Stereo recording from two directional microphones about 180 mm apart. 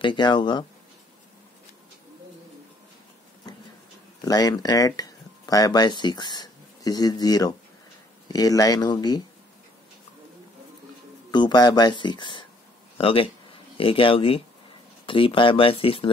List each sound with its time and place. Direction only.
0.0 s speech: 25° left (ahead or behind)
4.2 s speech: 20° left (ahead or behind)
11.3 s speech: 25° left (ahead or behind)